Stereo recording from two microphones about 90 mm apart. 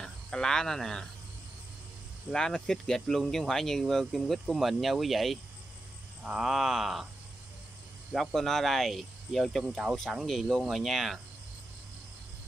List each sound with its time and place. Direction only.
0.0 s speech: 5° left (ahead or behind)
2.3 s speech: 5° left (ahead or behind)
8.1 s speech: centre (ahead or behind)